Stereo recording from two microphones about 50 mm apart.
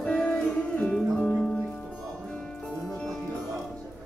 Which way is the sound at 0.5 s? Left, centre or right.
Left.